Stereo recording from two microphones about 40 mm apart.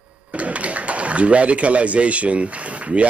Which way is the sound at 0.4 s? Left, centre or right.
Right.